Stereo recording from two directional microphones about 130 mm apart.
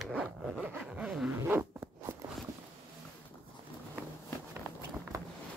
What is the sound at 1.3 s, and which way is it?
Zipper, 20° right (ahead or behind).